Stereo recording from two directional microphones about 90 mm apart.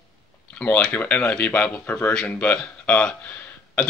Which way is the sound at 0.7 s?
15° left (ahead or behind).